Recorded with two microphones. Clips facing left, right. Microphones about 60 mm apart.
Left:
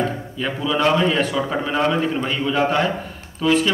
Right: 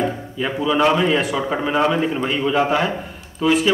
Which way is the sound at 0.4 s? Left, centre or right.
Centre.